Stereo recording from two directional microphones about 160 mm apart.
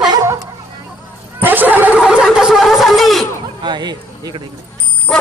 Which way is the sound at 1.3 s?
10° right (ahead or behind).